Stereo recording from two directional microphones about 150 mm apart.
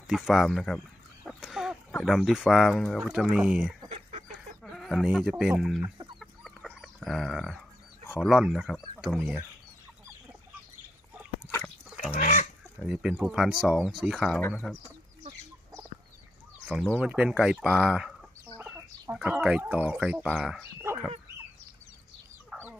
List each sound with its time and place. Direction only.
0.0 s speech: centre (ahead or behind)
1.2 s a sound: 5° right (ahead or behind)
2.0 s speech: centre (ahead or behind)
3.9 s fowl: 50° right (ahead or behind)
4.6 s speech: centre (ahead or behind)
6.1 s chicken: centre (ahead or behind)
8.2 s speech: centre (ahead or behind)
12.0 s chicken: 60° left (ahead or behind)
12.8 s speech: 5° right (ahead or behind)
16.6 s speech: 5° right (ahead or behind)
19.1 s speech: 5° right (ahead or behind)
20.9 s chicken: 15° right (ahead or behind)
22.5 s fowl: centre (ahead or behind)